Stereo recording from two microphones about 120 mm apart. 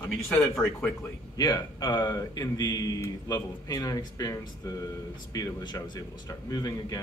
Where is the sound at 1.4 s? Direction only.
35° left (ahead or behind).